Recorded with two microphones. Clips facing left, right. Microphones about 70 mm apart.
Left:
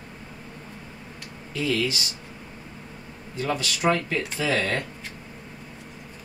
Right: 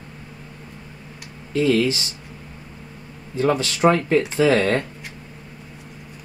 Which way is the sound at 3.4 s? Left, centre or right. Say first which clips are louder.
Right 8 dB; right.